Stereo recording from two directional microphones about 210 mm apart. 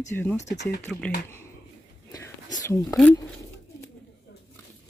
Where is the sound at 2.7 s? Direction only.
10° left (ahead or behind).